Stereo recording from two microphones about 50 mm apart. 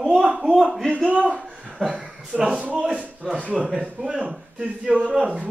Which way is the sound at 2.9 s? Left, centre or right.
Right.